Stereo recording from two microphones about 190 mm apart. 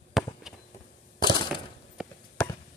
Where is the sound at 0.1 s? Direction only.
Centre (ahead or behind).